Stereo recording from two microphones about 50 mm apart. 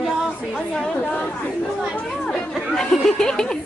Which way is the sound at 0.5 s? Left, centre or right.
Left.